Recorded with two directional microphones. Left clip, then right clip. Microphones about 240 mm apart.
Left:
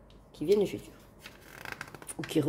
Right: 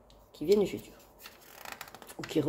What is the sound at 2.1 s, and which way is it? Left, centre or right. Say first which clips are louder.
Speech: left 1 dB; centre.